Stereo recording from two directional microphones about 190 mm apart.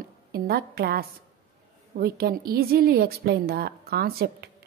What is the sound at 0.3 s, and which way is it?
A woman's voice, 55° right (ahead or behind).